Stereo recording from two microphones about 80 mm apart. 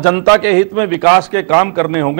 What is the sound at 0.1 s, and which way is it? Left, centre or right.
A man's voice, centre.